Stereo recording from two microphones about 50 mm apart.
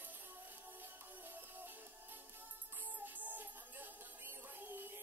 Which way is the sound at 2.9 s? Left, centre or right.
Right.